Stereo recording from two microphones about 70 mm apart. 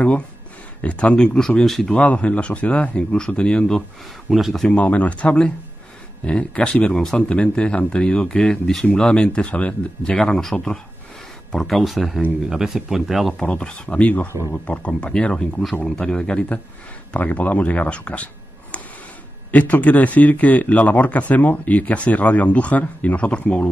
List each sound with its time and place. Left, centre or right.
0.8 s speech: centre
4.3 s speech: centre
4.6 s speech: left; by 13.3 s centre
13.4 s speech: centre